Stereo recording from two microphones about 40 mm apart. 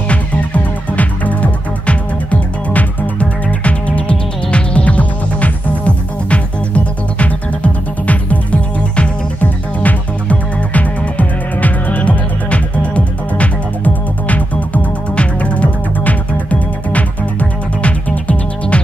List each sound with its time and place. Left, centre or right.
0.9 s music: left
9.4 s music: left